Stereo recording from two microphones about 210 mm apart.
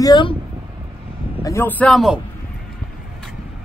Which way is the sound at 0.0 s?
20° left (ahead or behind).